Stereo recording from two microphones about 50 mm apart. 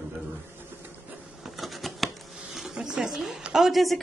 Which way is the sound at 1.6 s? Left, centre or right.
Centre.